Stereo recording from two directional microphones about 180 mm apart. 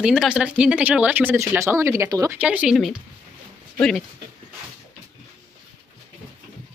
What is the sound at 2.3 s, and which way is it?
Speech, 5° right (ahead or behind).